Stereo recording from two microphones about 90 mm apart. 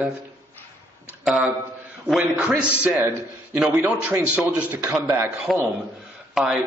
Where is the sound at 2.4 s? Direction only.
10° right (ahead or behind).